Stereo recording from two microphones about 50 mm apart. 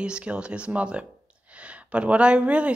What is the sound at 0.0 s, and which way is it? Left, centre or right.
A woman's voice, right.